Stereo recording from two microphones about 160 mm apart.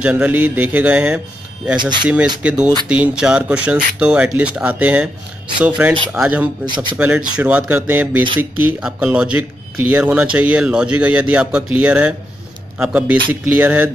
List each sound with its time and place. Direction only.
0.0 s speech: 10° right (ahead or behind)
1.8 s speech: 30° right (ahead or behind)
2.0 s speech: 10° right (ahead or behind)
6.6 s speech: 30° right (ahead or behind)
7.0 s speech: 10° right (ahead or behind)